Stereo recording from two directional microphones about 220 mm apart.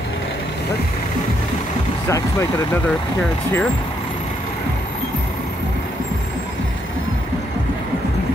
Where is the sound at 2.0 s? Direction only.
10° left (ahead or behind).